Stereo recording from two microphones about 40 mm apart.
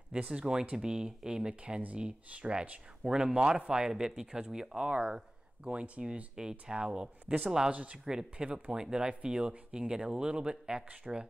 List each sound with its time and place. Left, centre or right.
0.3 s speech: centre
3.1 s speech: right
7.7 s speech: right
8.1 s speech: centre